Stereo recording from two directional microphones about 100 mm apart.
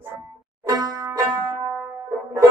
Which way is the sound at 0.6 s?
40° right (ahead or behind).